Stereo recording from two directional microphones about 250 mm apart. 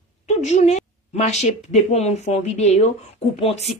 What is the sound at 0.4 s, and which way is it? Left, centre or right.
A woman's voice, left.